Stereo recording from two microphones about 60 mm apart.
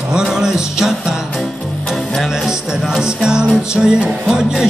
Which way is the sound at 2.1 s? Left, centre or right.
Centre.